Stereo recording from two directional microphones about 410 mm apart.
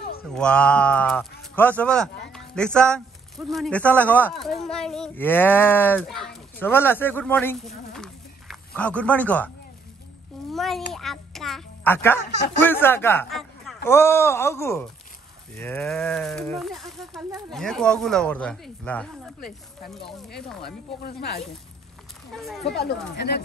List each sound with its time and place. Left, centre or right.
0.3 s speech: centre
10.5 s a child's voice: centre
21.0 s speech: left
22.3 s speech: centre
23.1 s speech: left